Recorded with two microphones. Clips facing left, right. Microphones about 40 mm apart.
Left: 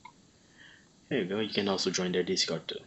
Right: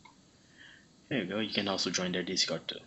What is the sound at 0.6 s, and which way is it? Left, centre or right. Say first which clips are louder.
Speech: even; centre.